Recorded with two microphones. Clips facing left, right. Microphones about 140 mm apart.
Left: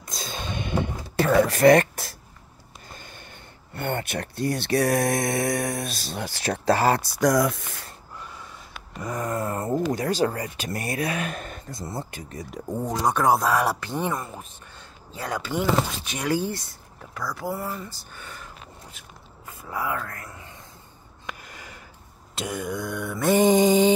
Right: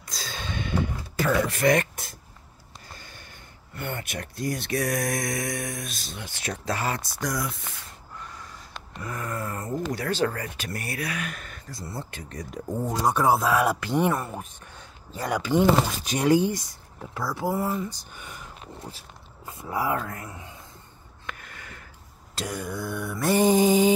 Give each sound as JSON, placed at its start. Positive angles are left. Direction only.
{"t": 0.0, "sound": "sigh", "side_deg": 20}
{"t": 1.3, "sound": "speech", "side_deg": 40}
{"t": 2.9, "sound": "a sound", "side_deg": 20}
{"t": 4.0, "sound": "speech", "side_deg": 30}
{"t": 7.2, "sound": "speech", "side_deg": 90}
{"t": 8.2, "sound": "snort", "side_deg": 5}
{"t": 9.0, "sound": "speech", "side_deg": 20}
{"t": 9.8, "sound": "speech", "side_deg": 15}
{"t": 18.9, "sound": "speech", "side_deg": -30}
{"t": 20.1, "sound": "speech", "side_deg": -15}
{"t": 21.3, "sound": "a sound", "side_deg": 15}
{"t": 22.3, "sound": "mantra", "side_deg": 0}